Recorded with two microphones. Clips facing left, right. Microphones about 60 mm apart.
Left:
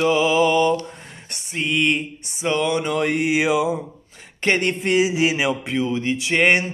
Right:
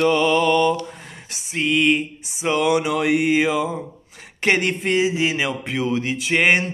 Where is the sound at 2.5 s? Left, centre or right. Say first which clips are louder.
Right 2 dB; centre.